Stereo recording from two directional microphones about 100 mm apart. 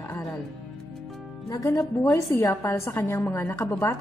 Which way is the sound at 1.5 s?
35° left (ahead or behind).